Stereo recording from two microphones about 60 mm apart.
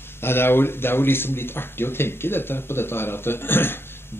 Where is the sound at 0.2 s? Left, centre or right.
Left.